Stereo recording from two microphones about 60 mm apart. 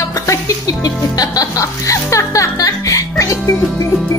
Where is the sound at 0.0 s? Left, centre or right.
Left.